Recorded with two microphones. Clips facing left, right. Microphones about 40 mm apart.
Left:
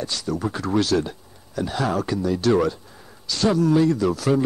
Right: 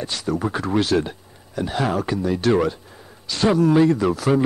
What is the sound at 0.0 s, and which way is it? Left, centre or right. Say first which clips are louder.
A man's voice: right 2 dB; right.